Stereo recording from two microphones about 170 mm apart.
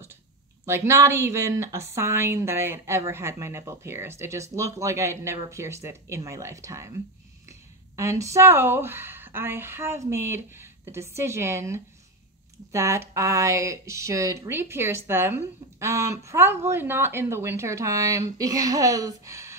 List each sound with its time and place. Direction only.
0.7 s speech: 15° right (ahead or behind)